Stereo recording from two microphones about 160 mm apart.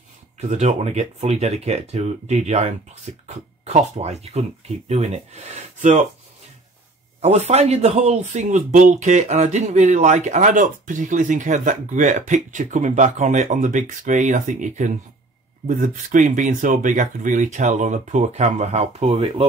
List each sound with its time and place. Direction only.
0.4 s a man's voice: 45° right (ahead or behind)
7.2 s a man's voice: 40° right (ahead or behind)